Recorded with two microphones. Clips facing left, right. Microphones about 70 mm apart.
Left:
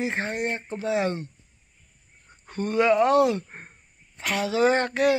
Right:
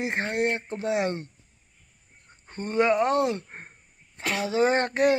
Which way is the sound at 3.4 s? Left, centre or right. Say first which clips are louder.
Even; right.